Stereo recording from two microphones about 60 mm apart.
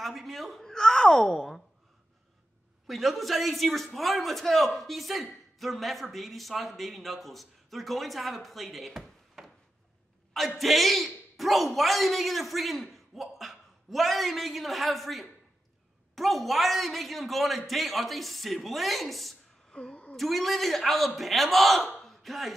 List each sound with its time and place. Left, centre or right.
0.0 s speech: centre
2.9 s a man's voice: centre
10.6 s a man's voice: centre
19.7 s a sound: centre
20.2 s a man's voice: centre
21.9 s a sound: centre